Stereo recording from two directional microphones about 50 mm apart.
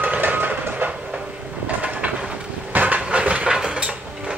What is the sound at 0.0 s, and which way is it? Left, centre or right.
Mechanisms, right.